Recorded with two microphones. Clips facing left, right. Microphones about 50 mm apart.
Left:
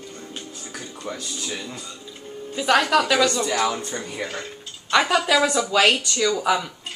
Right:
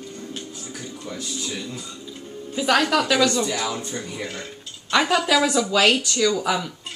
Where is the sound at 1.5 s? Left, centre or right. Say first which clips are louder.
Even; left.